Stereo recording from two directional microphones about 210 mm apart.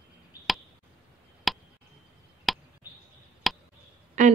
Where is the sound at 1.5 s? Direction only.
Centre (ahead or behind).